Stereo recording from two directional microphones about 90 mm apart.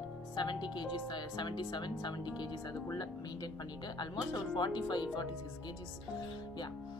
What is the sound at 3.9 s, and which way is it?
Speech, 55° left (ahead or behind).